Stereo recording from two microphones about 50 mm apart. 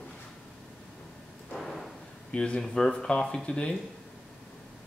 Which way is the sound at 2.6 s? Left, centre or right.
Centre.